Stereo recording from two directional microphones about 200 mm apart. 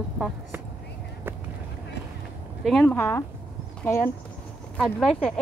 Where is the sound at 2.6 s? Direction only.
Centre (ahead or behind).